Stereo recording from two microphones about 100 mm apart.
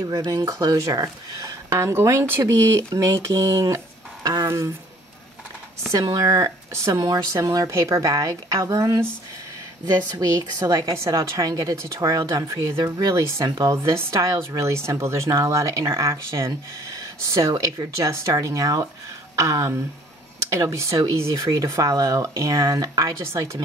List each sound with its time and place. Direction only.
0.2 s speech: 35° right (ahead or behind)
5.9 s speech: 35° right (ahead or behind)